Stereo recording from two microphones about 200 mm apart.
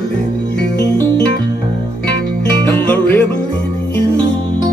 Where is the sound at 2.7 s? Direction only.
10° left (ahead or behind).